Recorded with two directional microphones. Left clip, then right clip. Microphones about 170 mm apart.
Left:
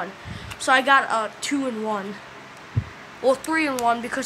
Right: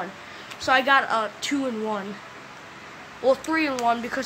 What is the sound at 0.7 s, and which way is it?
Speech, 10° left (ahead or behind).